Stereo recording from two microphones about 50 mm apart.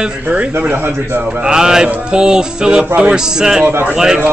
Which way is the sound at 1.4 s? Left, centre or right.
Centre.